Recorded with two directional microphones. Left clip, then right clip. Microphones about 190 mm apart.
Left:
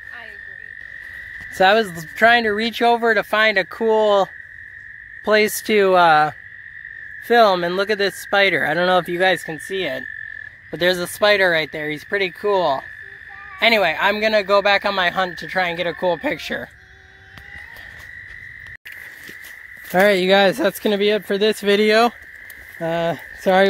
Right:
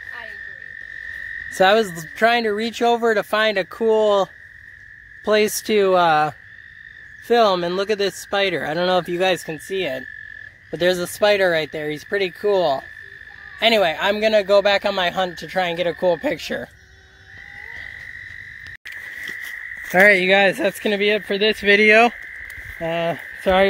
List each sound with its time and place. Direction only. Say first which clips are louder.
1.6 s speech: left 1 dB; 5° right (ahead or behind)
20.1 s speech: left 2 dB; 25° left (ahead or behind)